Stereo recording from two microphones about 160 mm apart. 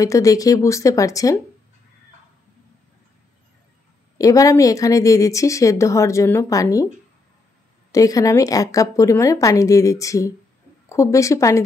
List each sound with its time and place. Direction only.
0.0 s a woman's voice: 20° left (ahead or behind)
4.2 s a woman's voice: 20° left (ahead or behind)
7.9 s a woman's voice: 20° left (ahead or behind)